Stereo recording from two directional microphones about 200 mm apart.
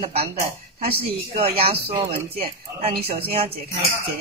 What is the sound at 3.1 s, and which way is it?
Speech, 30° right (ahead or behind).